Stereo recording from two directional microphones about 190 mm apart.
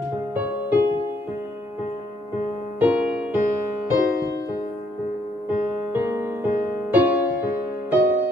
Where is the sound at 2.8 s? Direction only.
10° right (ahead or behind).